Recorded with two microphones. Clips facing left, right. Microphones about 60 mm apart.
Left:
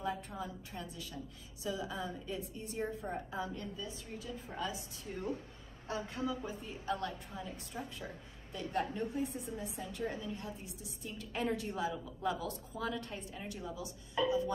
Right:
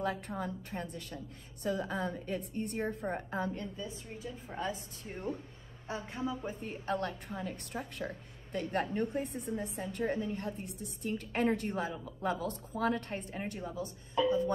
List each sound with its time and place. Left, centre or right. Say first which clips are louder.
0.3 s a woman's voice: right 5 dB; right
3.5 s a woman's voice: right 2 dB; right
5.9 s a woman's voice: even; right
6.4 s a woman's voice: right 2 dB; right